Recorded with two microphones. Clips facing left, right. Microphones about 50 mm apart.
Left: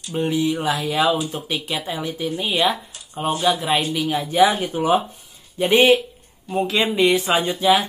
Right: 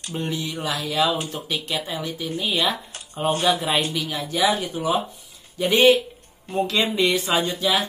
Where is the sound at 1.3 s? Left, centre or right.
Centre.